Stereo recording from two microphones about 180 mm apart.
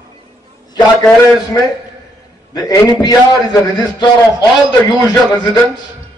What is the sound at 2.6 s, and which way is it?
A man's voice, 20° left (ahead or behind).